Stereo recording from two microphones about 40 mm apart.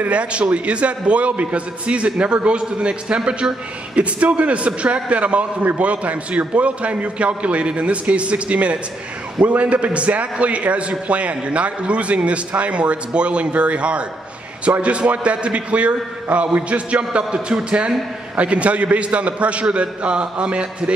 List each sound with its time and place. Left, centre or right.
0.0 s a man's voice: right